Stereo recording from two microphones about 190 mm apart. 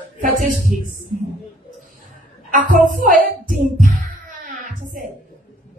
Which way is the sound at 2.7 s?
45° right (ahead or behind).